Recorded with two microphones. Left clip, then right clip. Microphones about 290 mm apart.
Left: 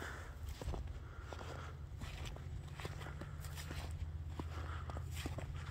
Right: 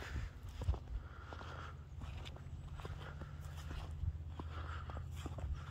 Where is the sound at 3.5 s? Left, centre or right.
Left.